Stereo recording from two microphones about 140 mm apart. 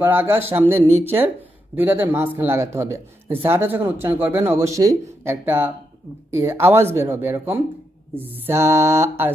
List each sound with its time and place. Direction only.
0.0 s speech: 15° right (ahead or behind)